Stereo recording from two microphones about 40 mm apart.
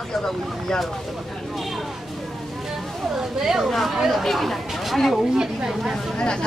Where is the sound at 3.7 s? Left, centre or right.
Centre.